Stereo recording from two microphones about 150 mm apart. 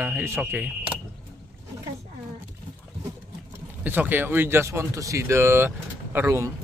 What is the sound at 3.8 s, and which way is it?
A man's voice, 10° right (ahead or behind).